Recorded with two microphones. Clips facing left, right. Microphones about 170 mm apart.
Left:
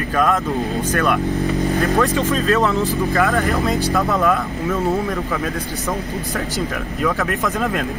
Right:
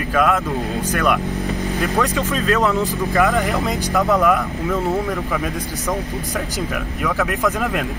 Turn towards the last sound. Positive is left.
turn(degrees=-15)  # may be behind; listen again after turning